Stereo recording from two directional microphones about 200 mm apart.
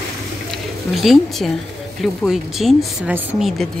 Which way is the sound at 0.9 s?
Centre (ahead or behind).